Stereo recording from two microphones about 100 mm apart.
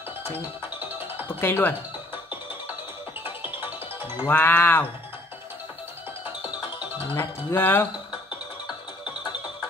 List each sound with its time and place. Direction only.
0.6 s music: 20° right (ahead or behind)
1.4 s speech: 20° left (ahead or behind)
3.3 s music: 20° right (ahead or behind)
4.3 s speech: 20° left (ahead or behind)
7.2 s speech: 20° left (ahead or behind)